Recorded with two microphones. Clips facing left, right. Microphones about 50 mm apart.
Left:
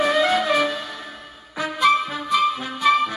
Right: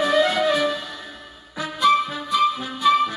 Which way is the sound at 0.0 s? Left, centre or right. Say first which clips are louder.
Even; left.